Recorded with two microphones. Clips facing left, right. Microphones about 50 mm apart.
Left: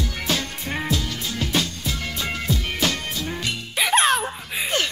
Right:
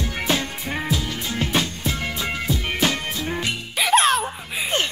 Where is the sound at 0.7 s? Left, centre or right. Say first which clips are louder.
Even; centre.